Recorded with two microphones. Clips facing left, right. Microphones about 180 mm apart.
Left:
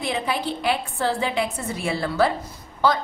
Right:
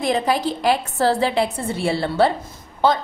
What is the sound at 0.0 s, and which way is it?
A woman's voice, 40° right (ahead or behind).